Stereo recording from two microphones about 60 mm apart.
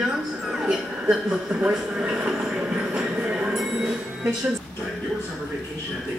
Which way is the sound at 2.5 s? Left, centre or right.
Centre.